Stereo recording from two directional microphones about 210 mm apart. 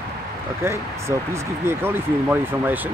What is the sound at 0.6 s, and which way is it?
Speech, 15° right (ahead or behind).